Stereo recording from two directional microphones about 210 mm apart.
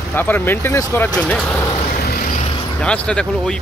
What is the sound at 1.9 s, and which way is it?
Vehicle, 45° left (ahead or behind).